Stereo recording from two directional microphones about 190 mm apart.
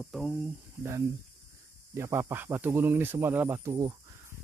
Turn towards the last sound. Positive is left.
turn(degrees=-15)  # may be behind; listen again after turning